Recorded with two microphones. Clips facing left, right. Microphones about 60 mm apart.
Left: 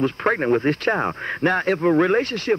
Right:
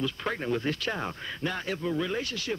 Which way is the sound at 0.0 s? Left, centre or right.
Left.